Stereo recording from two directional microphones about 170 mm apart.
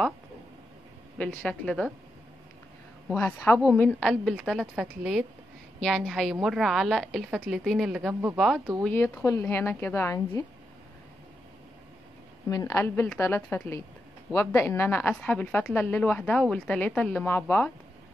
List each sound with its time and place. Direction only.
1.1 s a woman's voice: 10° left (ahead or behind)
3.2 s a woman's voice: 10° left (ahead or behind)
8.8 s a woman's voice: 10° left (ahead or behind)
12.4 s a woman's voice: 20° left (ahead or behind)